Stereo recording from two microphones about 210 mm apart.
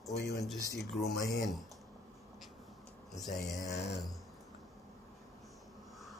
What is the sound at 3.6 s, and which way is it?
Speech, 55° left (ahead or behind).